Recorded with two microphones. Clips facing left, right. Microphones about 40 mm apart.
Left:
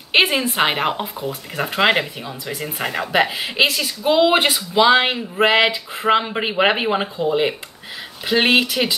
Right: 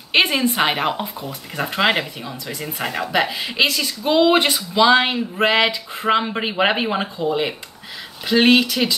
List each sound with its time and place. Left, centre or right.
0.1 s speech: centre
2.4 s speech: centre
2.8 s speech: centre